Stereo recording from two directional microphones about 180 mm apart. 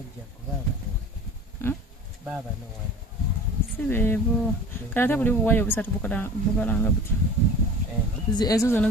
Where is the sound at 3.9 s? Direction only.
10° left (ahead or behind).